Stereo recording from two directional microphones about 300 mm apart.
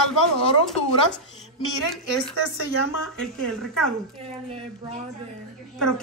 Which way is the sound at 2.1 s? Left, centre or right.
Left.